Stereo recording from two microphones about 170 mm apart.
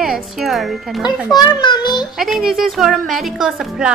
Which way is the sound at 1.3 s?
25° left (ahead or behind).